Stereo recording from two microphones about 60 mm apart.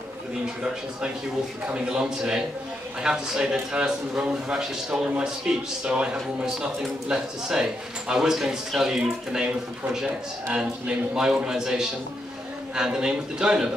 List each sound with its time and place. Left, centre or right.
1.7 s speech: centre